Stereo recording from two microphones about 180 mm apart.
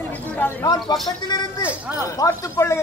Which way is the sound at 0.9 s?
25° left (ahead or behind).